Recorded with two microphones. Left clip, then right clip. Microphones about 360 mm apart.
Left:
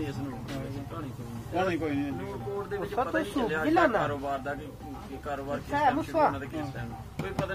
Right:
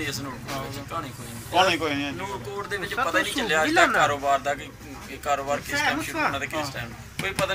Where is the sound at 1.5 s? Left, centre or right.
Right.